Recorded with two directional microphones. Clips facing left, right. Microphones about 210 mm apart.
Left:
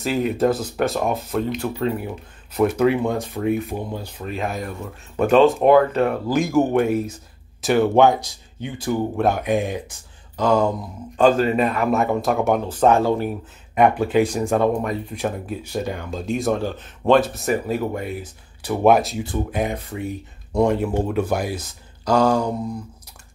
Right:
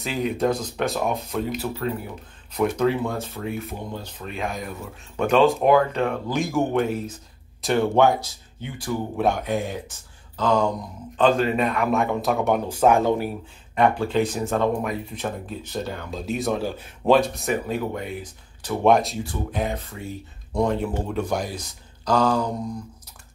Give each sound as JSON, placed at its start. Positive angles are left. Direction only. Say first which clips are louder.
{"t": 0.0, "sound": "speech", "louder": "left 4 dB", "side_deg": 5}
{"t": 7.9, "sound": "speech", "louder": "left 3 dB", "side_deg": 15}
{"t": 9.1, "sound": "speech", "louder": "even", "side_deg": 0}
{"t": 9.4, "sound": "speech", "louder": "left 4 dB", "side_deg": 15}
{"t": 12.6, "sound": "speech", "louder": "left 1 dB", "side_deg": -10}
{"t": 13.7, "sound": "speech", "louder": "left 4 dB", "side_deg": 15}
{"t": 14.2, "sound": "speech", "louder": "left 4 dB", "side_deg": 0}
{"t": 14.5, "sound": "speech", "louder": "left 3 dB", "side_deg": 15}
{"t": 14.8, "sound": "speech", "louder": "left 2 dB", "side_deg": 0}
{"t": 15.5, "sound": "speech", "louder": "left 4 dB", "side_deg": 10}
{"t": 16.1, "sound": "speech", "louder": "left 3 dB", "side_deg": 0}
{"t": 17.2, "sound": "speech", "louder": "left 2 dB", "side_deg": 0}